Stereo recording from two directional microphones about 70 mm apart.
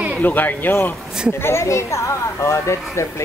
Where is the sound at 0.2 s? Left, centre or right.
Left.